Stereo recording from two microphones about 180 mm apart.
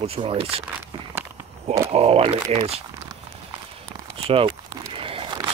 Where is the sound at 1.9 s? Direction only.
35° right (ahead or behind).